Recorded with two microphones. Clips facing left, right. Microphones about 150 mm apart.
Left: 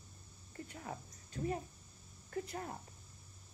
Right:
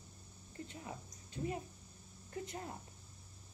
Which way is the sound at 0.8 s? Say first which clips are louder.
Left 2 dB; 40° left (ahead or behind).